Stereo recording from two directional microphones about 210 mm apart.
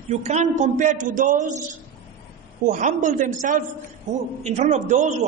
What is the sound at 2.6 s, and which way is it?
A man's voice, 35° right (ahead or behind).